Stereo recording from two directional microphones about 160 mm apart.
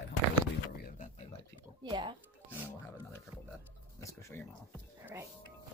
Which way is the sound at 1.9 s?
25° right (ahead or behind).